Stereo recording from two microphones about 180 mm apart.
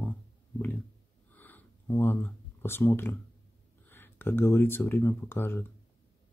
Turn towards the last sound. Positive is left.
turn(degrees=10)  # may be behind; listen again after turning